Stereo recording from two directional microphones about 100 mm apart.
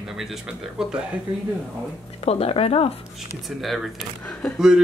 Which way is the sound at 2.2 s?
85° left.